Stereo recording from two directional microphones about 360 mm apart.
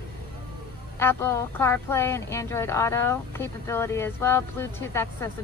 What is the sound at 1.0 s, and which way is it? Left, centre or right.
A woman's voice, centre.